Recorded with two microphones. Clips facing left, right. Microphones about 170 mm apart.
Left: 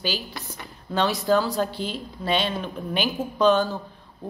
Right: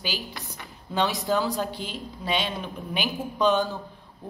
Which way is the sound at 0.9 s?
15° right (ahead or behind).